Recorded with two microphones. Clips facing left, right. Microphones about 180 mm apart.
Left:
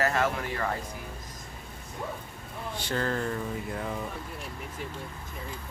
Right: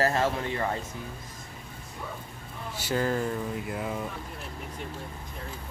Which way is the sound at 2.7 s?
10° right (ahead or behind).